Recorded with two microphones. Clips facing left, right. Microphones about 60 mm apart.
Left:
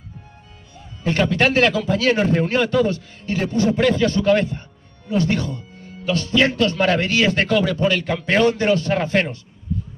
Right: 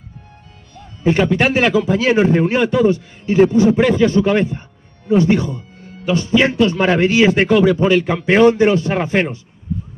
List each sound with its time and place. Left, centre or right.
1.0 s a man's voice: centre